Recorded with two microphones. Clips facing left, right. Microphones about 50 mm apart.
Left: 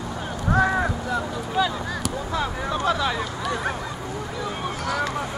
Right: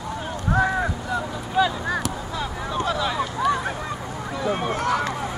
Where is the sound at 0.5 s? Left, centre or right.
Centre.